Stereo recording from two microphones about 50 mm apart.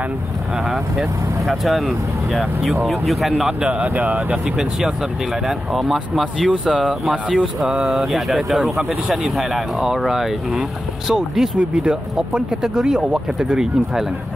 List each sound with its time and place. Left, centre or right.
0.7 s speech: centre
3.8 s speech: right
4.6 s speech: centre
6.5 s speech: centre
11.5 s speech: centre